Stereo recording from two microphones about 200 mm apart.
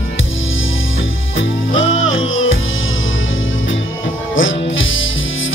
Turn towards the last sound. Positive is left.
turn(degrees=75)  # may be behind; listen again after turning